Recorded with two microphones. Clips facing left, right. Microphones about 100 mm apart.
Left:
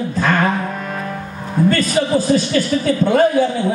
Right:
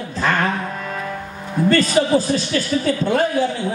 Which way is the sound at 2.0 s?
Centre (ahead or behind).